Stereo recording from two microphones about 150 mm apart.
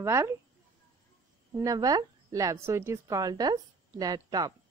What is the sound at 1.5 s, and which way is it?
Speech, 25° right (ahead or behind).